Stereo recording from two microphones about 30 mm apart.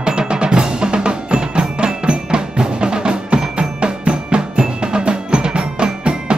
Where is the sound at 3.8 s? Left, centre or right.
Right.